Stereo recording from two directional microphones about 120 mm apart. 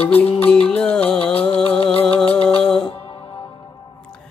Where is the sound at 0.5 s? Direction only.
10° left (ahead or behind).